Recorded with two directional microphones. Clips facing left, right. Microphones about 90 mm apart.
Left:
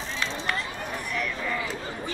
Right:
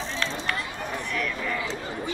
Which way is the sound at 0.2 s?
5° left (ahead or behind).